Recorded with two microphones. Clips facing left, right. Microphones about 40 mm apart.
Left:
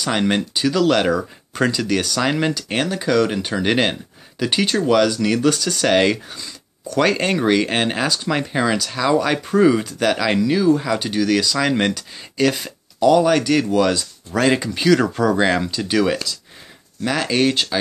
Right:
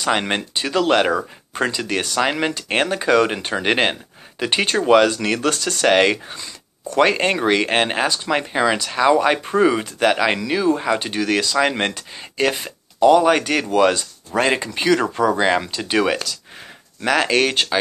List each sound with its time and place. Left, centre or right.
0.0 s speech: right
5.9 s speech: right
8.7 s speech: right
11.5 s speech: centre